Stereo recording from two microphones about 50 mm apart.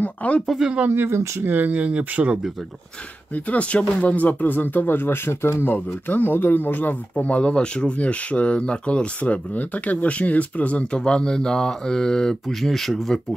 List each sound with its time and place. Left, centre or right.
0.0 s speech: left
0.8 s speech: right
1.4 s speech: right
3.3 s speech: left
6.0 s speech: left; by 13.2 s centre